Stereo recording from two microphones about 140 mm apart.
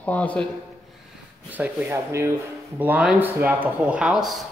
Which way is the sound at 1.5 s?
10° right (ahead or behind).